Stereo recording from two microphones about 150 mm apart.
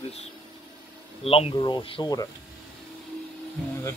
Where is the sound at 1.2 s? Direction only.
40° left (ahead or behind).